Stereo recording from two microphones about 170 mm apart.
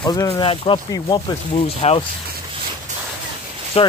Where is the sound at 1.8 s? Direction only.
40° left (ahead or behind).